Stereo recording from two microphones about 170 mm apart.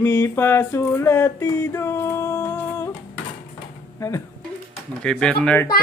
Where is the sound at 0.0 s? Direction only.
15° left (ahead or behind).